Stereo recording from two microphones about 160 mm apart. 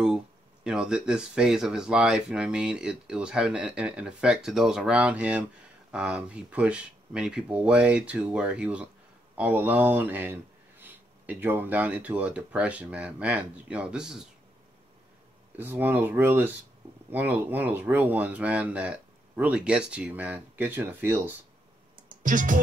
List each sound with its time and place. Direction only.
0.7 s speech: 5° right (ahead or behind)
15.5 s speech: 10° right (ahead or behind)
22.2 s speech: 55° right (ahead or behind)